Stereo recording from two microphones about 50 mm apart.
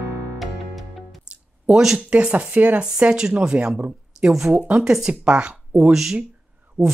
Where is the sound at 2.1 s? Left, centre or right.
Right.